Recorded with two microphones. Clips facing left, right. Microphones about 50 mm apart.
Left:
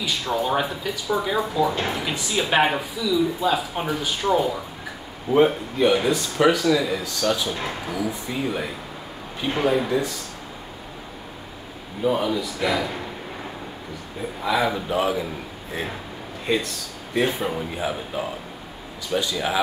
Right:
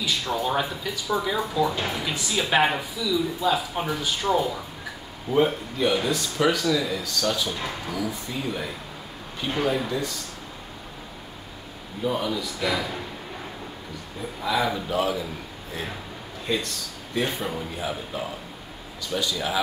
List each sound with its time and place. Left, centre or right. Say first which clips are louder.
0.0 s speech: left 2 dB; centre
12.0 s speech: left 4 dB; centre
14.4 s a man's voice: left 2 dB; centre
16.5 s a man's voice: left 4 dB; centre